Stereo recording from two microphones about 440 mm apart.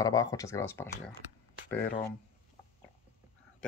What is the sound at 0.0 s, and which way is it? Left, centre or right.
Speech, centre.